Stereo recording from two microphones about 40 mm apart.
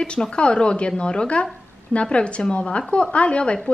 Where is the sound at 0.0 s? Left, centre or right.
Left.